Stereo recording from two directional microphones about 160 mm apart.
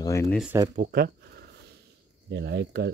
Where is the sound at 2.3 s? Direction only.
90° right.